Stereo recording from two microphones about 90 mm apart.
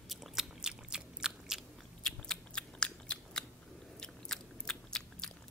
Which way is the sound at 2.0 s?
5° left (ahead or behind).